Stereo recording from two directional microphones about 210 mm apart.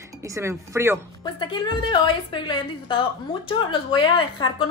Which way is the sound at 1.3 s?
25° left (ahead or behind).